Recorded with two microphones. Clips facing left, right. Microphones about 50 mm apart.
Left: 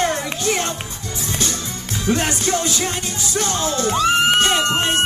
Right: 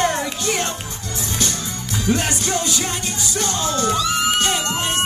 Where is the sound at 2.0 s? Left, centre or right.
Left.